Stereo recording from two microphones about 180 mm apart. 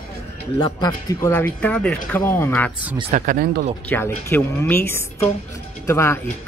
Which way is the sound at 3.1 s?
50° right (ahead or behind).